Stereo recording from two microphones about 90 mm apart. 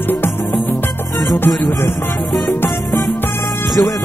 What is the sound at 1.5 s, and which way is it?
Music, centre (ahead or behind).